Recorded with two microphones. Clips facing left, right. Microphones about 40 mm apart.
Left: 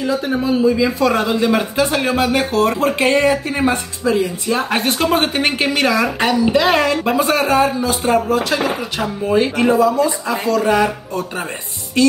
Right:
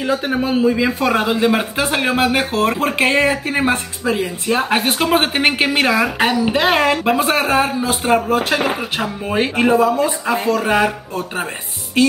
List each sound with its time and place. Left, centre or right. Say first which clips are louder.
0.0 s a man's voice: even; right
1.2 s speech: even; centre
4.6 s speech: right 1 dB; centre; by 9.0 s right
9.0 s speech: left 4 dB; right
9.4 s speech: right 1 dB; right
12.0 s music: left 1 dB; right